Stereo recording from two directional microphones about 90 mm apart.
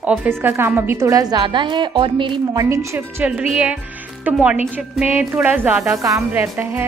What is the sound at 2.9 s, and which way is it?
A woman's voice, 15° right (ahead or behind).